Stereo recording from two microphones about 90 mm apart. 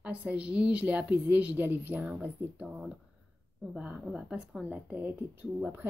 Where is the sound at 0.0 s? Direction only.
15° right (ahead or behind).